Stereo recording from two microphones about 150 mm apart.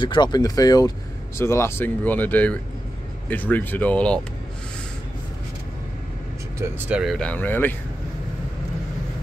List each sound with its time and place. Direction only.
0.0 s speech: 30° left (ahead or behind); by 4.2 s 10° left (ahead or behind)
6.9 s speech: 5° right (ahead or behind)
7.2 s speech: 10° left (ahead or behind)